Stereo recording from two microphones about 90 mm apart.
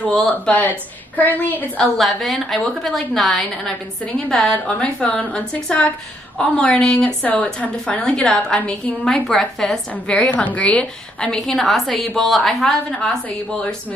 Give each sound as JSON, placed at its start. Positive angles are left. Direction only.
{"t": 0.5, "sound": "a woman's voice", "side_deg": 20}
{"t": 2.0, "sound": "a woman's voice", "side_deg": 0}